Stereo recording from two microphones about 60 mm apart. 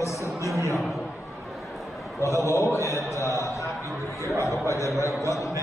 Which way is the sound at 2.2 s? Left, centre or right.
Left.